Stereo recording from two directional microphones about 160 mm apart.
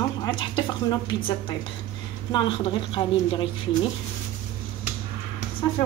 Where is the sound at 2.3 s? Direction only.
30° left (ahead or behind).